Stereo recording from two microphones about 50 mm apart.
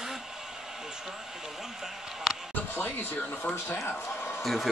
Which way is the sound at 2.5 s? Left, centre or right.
Left.